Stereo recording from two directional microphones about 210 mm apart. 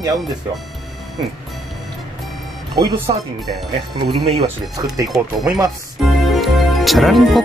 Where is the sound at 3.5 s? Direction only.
30° right (ahead or behind).